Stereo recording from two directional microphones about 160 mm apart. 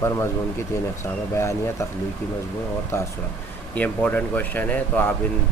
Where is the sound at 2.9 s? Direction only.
15° left (ahead or behind).